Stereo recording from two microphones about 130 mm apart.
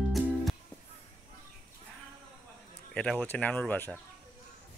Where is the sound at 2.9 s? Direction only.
5° left (ahead or behind).